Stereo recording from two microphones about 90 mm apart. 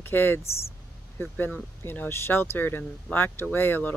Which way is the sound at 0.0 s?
25° left (ahead or behind).